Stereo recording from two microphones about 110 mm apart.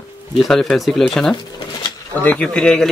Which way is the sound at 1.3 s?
40° left (ahead or behind).